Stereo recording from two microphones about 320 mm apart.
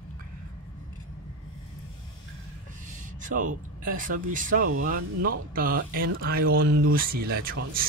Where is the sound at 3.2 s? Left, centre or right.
Right.